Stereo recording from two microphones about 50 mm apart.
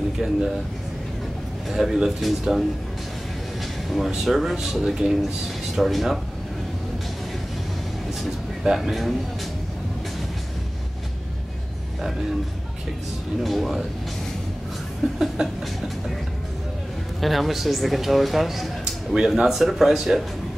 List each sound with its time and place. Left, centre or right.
0.2 s a man's voice: centre
1.7 s a man's voice: centre
3.9 s a man's voice: centre
8.1 s speech: centre
13.4 s a man's voice: centre
15.1 s speech: centre
17.2 s a man's voice: centre